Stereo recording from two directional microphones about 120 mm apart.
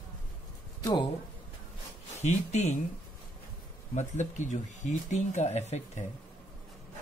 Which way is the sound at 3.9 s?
80° left.